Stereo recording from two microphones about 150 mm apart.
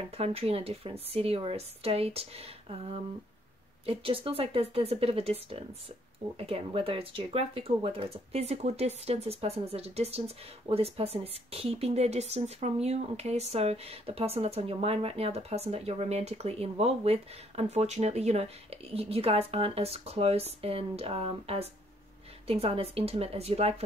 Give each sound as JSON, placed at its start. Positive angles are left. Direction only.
{"t": 0.0, "sound": "speech", "side_deg": -40}